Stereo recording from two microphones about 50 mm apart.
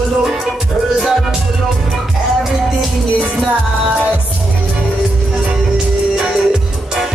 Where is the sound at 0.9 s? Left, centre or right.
Centre.